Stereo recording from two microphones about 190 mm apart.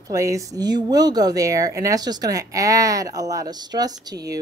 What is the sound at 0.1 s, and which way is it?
A woman's voice, 15° right (ahead or behind).